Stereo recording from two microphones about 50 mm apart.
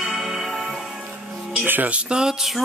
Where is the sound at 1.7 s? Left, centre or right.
Right.